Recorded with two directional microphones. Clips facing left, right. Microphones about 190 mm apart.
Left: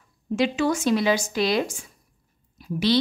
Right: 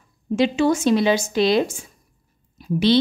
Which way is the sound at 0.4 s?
25° right (ahead or behind).